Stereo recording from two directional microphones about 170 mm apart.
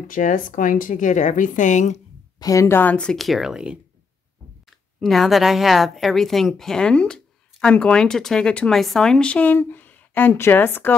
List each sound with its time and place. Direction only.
0.1 s a woman's voice: 50° left (ahead or behind)
2.3 s speech: 20° left (ahead or behind)